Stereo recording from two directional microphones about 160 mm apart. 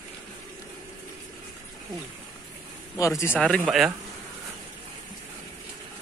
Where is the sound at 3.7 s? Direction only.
Centre (ahead or behind).